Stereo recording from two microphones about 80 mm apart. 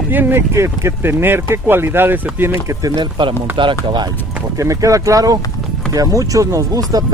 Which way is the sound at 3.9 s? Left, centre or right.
Right.